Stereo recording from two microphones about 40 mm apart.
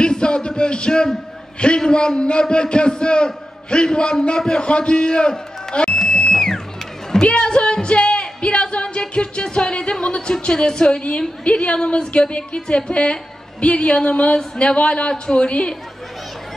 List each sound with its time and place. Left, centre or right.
0.0 s a sound: left
1.6 s a woman's voice: left
5.9 s music: centre
7.2 s music: left
10.4 s a woman's voice: left